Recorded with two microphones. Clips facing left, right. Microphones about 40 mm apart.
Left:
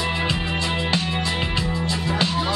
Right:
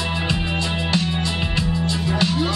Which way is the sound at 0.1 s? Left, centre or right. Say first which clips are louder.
Even; centre.